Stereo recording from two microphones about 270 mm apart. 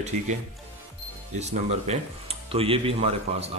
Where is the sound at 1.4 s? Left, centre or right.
Right.